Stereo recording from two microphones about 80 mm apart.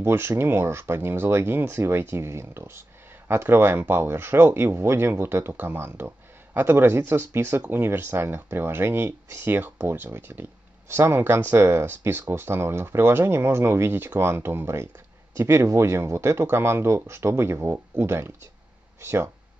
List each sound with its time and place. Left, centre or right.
0.0 s speech: right